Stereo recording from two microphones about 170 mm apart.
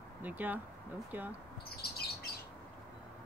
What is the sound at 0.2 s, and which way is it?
Speech, 10° right (ahead or behind).